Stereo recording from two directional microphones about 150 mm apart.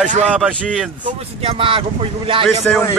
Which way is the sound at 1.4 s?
35° right (ahead or behind).